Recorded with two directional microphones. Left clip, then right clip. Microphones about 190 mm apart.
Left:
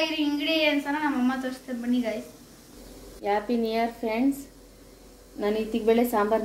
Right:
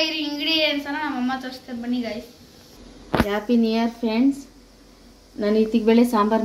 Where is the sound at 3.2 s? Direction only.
45° right (ahead or behind).